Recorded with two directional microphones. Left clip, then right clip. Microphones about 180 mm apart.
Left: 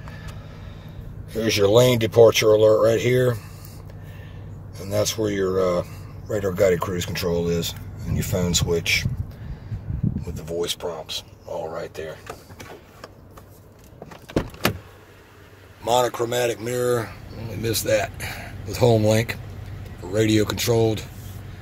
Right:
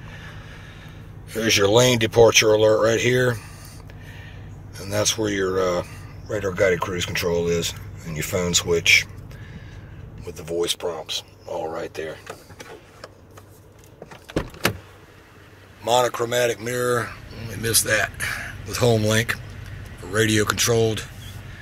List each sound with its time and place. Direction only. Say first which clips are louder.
1.3 s speech: even; 10° left (ahead or behind)
4.7 s speech: right 1 dB; 10° left (ahead or behind)
6.3 s speech: left 1 dB; 20° left (ahead or behind)
10.2 s speech: right 3 dB; centre (ahead or behind)
15.8 s speech: right 1 dB; 15° left (ahead or behind)